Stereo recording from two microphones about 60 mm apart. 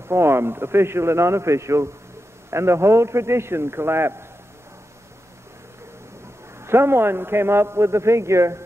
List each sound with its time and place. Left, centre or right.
0.1 s a man's voice: right
6.6 s a man's voice: right